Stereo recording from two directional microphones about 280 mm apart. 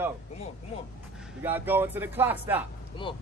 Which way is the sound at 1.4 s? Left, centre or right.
Centre.